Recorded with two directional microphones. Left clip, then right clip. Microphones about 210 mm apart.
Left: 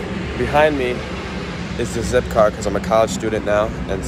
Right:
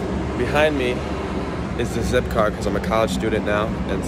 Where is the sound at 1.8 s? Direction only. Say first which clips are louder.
Left 3 dB; centre (ahead or behind).